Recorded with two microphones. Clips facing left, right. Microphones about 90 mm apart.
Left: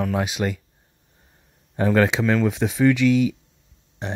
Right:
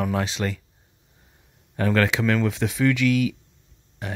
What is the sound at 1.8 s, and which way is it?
Speech, 20° left (ahead or behind).